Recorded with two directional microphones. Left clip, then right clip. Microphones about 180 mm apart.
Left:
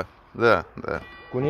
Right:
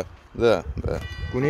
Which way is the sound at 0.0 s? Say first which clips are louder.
Even; 15° right (ahead or behind).